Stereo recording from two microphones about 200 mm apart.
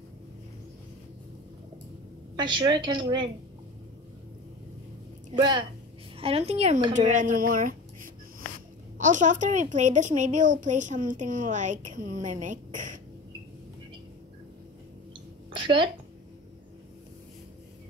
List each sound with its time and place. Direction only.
2.3 s a woman's voice: 20° right (ahead or behind)
5.4 s a woman's voice: 20° right (ahead or behind); by 13.0 s 40° right (ahead or behind)
15.5 s a sound: 25° right (ahead or behind)